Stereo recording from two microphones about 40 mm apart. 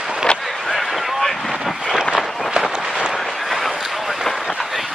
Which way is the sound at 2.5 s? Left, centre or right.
Centre.